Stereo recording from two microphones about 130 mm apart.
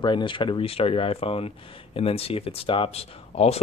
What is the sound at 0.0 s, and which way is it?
Speech, 40° left (ahead or behind).